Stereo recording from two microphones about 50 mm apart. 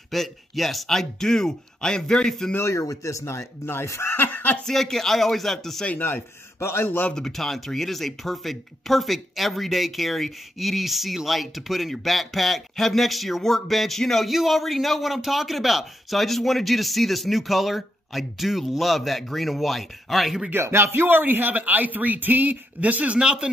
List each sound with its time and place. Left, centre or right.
0.1 s speech: centre
2.6 s a man's voice: left
4.2 s speech: left
4.6 s speech: centre
6.0 s a man's voice: left
7.2 s speech: centre
20.6 s a man's voice: right; by 23.5 s centre